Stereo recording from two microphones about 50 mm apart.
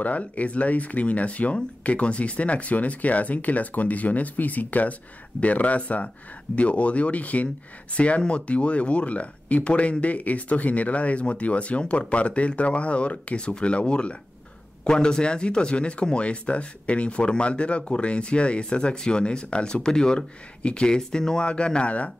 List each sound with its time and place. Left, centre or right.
0.0 s speech: left